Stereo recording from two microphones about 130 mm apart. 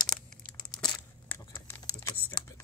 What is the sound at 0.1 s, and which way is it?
Tearing, 5° left (ahead or behind).